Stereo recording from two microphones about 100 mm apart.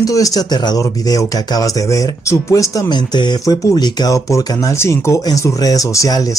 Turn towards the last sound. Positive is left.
turn(degrees=35)  # may be behind; listen again after turning